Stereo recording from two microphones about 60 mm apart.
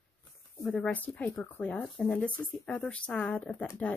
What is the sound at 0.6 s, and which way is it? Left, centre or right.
Speech, left.